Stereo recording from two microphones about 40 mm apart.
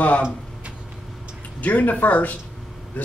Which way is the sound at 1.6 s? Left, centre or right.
Left.